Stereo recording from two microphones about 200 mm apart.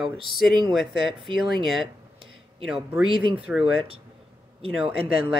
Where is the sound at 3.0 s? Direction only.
25° right (ahead or behind).